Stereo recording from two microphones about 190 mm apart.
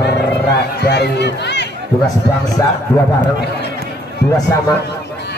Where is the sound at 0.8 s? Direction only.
60° left (ahead or behind).